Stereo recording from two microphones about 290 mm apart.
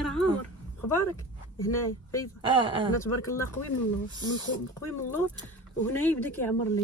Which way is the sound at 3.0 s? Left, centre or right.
Centre.